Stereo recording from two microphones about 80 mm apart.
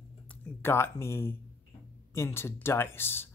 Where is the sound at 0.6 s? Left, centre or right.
Left.